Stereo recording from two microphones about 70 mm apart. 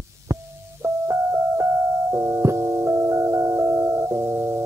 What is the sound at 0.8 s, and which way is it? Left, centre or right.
Music, right.